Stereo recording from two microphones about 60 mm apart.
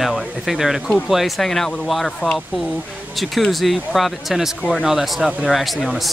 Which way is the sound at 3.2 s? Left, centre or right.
Centre.